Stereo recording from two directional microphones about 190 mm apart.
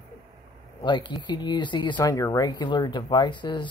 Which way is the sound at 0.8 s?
25° left (ahead or behind).